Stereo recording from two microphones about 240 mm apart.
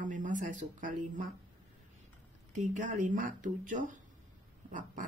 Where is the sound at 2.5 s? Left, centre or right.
Right.